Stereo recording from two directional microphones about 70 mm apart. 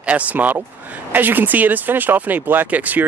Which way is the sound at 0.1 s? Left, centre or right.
Right.